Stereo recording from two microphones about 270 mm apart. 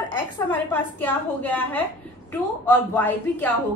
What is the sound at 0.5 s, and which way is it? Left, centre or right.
A woman's voice, centre.